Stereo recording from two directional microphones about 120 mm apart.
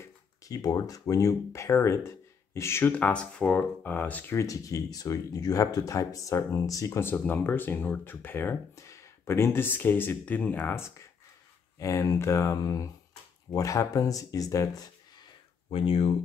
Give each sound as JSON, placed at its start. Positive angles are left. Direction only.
{"t": 0.0, "sound": "speech", "side_deg": 30}
{"t": 15.7, "sound": "speech", "side_deg": 50}